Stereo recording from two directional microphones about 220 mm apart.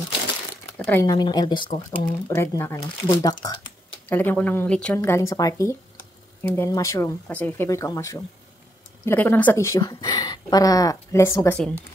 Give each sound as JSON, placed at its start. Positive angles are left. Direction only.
{"t": 0.7, "sound": "speech", "side_deg": 10}